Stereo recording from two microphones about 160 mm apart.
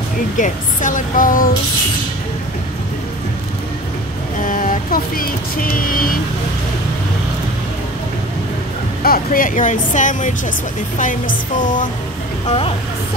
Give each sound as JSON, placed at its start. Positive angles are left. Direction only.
{"t": 0.4, "sound": "speech", "side_deg": 55}
{"t": 4.5, "sound": "music", "side_deg": 60}
{"t": 9.0, "sound": "speech", "side_deg": 65}
{"t": 11.6, "sound": "speech", "side_deg": 55}
{"t": 12.4, "sound": "speech", "side_deg": 35}